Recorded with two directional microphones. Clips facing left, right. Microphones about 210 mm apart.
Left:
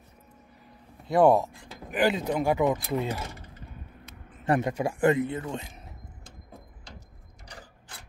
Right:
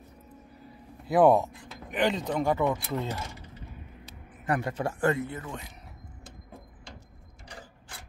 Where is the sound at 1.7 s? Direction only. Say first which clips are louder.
Left 3 dB; 5° left (ahead or behind).